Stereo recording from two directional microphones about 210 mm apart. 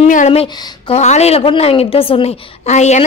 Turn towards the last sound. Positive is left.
turn(degrees=35)  # may be behind; listen again after turning